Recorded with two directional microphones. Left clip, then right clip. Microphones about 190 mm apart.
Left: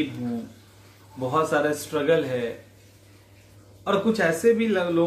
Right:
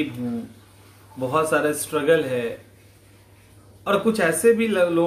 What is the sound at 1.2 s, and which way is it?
Speech, 5° right (ahead or behind).